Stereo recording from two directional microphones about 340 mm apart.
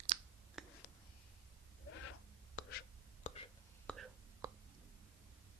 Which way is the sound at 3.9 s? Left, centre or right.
Centre.